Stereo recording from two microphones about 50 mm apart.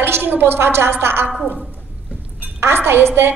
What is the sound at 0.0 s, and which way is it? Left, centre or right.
A woman's voice, right.